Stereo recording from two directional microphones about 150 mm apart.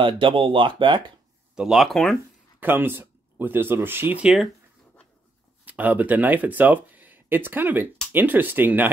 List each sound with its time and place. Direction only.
0.0 s speech: 35° right (ahead or behind)
1.5 s speech: 5° right (ahead or behind)
2.6 s speech: 15° right (ahead or behind)
5.7 s speech: 10° right (ahead or behind)